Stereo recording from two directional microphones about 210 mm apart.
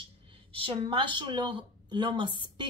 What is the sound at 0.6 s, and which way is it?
Speech, 25° right (ahead or behind).